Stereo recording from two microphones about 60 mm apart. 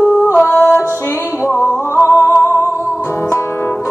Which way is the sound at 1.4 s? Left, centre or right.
Left.